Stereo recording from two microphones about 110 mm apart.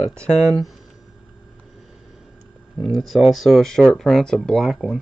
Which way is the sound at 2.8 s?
Centre (ahead or behind).